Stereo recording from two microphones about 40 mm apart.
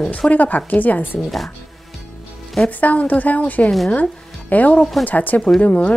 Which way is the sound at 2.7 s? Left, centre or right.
Left.